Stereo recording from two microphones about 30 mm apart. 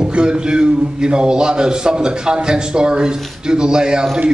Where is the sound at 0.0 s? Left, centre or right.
Right.